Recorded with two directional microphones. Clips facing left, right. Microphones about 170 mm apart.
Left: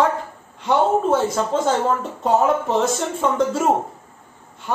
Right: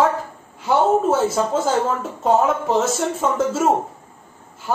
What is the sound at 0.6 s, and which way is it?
Speech, 5° right (ahead or behind).